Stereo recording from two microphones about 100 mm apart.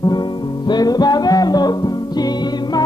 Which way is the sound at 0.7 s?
40° left (ahead or behind).